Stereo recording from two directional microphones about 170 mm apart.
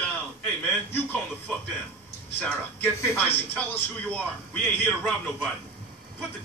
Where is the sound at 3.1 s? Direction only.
10° left (ahead or behind).